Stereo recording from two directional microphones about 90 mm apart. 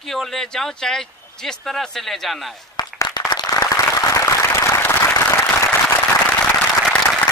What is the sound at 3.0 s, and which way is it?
Applause, 50° left (ahead or behind).